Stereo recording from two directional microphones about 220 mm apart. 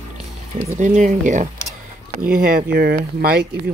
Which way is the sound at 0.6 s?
35° right (ahead or behind).